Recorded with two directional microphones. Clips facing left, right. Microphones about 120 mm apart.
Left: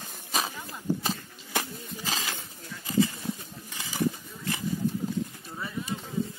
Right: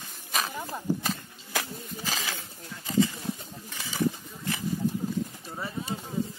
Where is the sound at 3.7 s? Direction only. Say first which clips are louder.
Even; 15° left (ahead or behind).